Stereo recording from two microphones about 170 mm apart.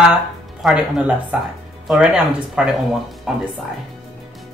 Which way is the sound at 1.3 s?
10° right (ahead or behind).